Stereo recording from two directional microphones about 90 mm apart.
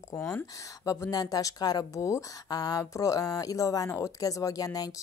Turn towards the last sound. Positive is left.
turn(degrees=40)  # may be behind; listen again after turning